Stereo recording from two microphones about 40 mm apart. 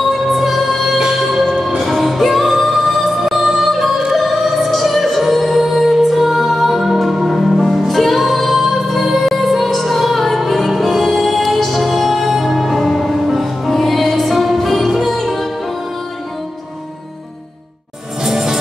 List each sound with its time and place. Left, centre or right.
0.0 s music: centre
18.2 s music: centre